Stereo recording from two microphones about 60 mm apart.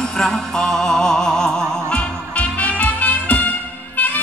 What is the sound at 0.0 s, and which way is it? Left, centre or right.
Music, centre.